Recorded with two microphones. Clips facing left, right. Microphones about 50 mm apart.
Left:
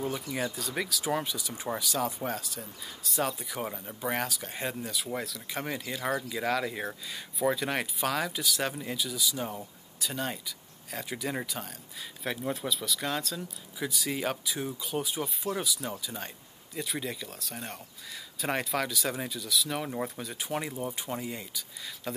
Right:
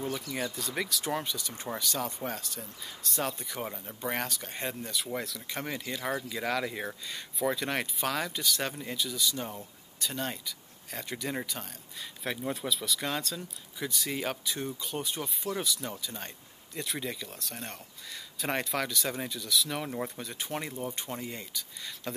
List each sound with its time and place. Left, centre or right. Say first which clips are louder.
0.2 s speech: left 2 dB; centre